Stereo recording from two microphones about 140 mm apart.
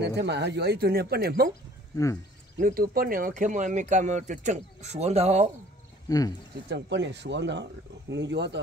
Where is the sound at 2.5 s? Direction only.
80° right; by 5.5 s 50° right (ahead or behind).